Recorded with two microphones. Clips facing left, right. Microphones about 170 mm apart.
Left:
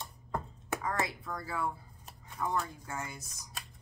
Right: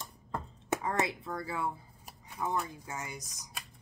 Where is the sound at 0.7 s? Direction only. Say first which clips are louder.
Right 3 dB; 20° right (ahead or behind).